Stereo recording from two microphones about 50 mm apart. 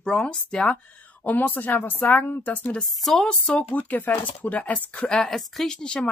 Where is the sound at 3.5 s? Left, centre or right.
Left.